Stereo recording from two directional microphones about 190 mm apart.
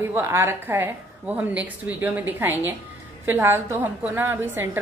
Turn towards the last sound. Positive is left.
turn(degrees=-10)  # may be behind; listen again after turning